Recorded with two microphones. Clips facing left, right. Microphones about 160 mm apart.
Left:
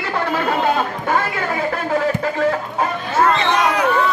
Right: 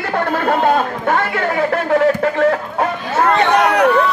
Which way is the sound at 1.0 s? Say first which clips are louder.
Right 3 dB; 65° right (ahead or behind).